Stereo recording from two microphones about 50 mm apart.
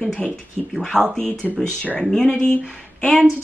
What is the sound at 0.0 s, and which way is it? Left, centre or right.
Speech, centre.